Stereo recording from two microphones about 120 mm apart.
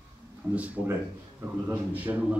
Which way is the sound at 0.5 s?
10° right (ahead or behind).